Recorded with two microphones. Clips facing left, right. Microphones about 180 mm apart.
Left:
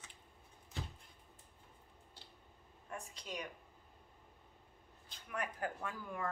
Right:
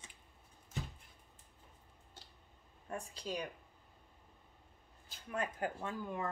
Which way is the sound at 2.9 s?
30° right (ahead or behind).